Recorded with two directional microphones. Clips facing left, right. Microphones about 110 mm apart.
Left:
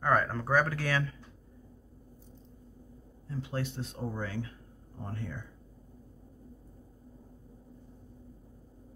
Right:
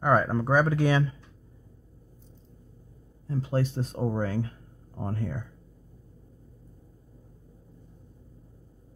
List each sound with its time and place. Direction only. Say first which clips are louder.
0.0 s speech: right 5 dB; 15° right (ahead or behind)
3.3 s speech: right 8 dB; 40° right (ahead or behind)